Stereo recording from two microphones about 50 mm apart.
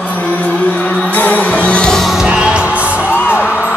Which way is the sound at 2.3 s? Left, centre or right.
Right.